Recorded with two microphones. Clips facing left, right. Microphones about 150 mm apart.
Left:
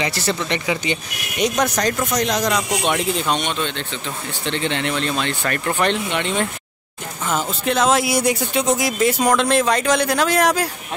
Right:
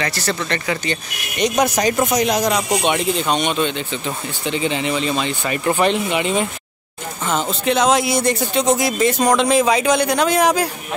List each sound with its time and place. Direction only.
0.0 s speech: 15° left (ahead or behind)
1.6 s speech: 10° right (ahead or behind)